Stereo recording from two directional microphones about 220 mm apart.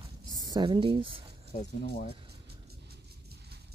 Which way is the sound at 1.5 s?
35° left (ahead or behind).